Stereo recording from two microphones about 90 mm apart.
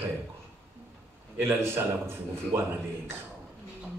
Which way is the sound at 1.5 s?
25° right (ahead or behind).